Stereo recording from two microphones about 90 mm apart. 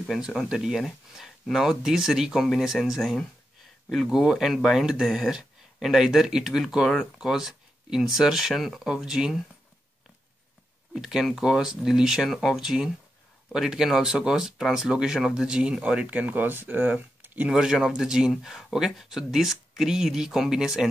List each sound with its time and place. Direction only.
0.3 s speech: 5° right (ahead or behind)
10.9 s speech: 5° right (ahead or behind)
17.5 s speech: 5° right (ahead or behind)